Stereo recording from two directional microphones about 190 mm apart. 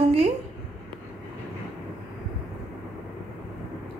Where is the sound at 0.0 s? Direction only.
35° right (ahead or behind).